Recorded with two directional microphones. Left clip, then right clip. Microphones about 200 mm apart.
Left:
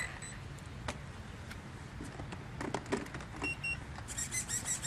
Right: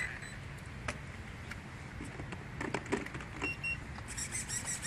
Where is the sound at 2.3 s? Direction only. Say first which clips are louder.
Right 1 dB; 10° left (ahead or behind).